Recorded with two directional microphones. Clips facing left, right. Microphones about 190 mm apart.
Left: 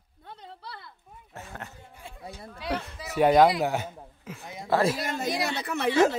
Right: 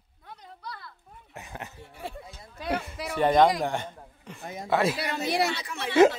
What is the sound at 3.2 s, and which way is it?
Speech, 5° left (ahead or behind).